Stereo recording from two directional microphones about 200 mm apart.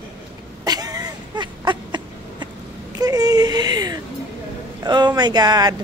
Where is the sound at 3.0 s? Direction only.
20° right (ahead or behind).